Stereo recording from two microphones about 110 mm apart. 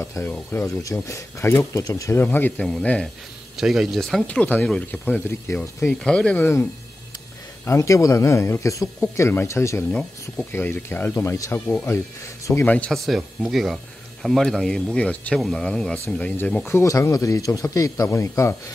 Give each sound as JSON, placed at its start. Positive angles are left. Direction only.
{"t": 0.0, "sound": "speech", "side_deg": 25}
{"t": 3.5, "sound": "speech", "side_deg": -5}
{"t": 4.3, "sound": "speech", "side_deg": 15}
{"t": 6.4, "sound": "speech", "side_deg": 20}